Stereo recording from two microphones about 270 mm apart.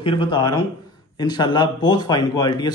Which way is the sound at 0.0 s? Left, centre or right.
Centre.